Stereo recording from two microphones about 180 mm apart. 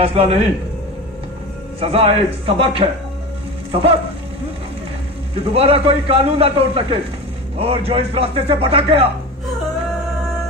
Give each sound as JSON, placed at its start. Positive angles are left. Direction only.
{"t": 0.0, "sound": "a man's voice", "side_deg": -30}
{"t": 1.8, "sound": "a man's voice", "side_deg": -30}
{"t": 5.3, "sound": "a man's voice", "side_deg": -35}